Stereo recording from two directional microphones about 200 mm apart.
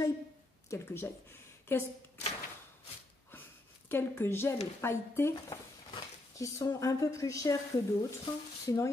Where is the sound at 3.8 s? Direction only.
10° left (ahead or behind).